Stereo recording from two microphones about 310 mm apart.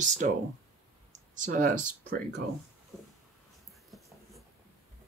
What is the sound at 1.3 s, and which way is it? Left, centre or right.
Speech, right.